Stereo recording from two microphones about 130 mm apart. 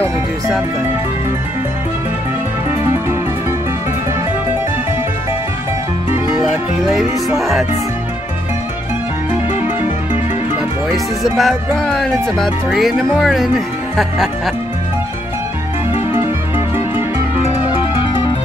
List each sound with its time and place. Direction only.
6.4 s music: 5° right (ahead or behind)
7.3 s speech: 5° right (ahead or behind)
10.9 s speech: centre (ahead or behind)
16.1 s music: 15° right (ahead or behind)